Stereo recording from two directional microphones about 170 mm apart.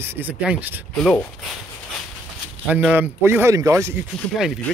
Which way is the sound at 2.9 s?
10° right (ahead or behind).